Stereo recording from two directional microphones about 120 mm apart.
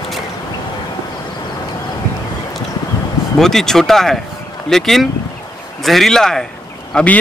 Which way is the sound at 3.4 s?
5° left (ahead or behind).